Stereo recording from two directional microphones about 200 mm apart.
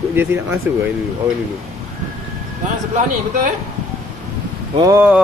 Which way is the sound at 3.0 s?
40° right (ahead or behind).